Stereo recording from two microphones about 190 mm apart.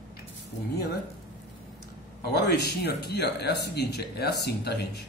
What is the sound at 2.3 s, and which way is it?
Speech, 60° left (ahead or behind).